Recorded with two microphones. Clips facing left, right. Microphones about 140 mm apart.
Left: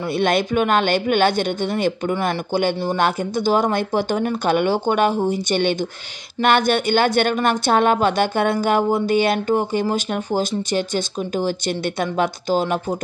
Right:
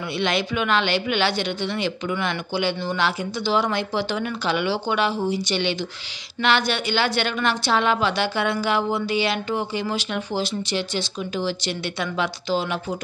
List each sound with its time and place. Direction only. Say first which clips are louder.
0.2 s speech: left 5 dB; 50° left (ahead or behind)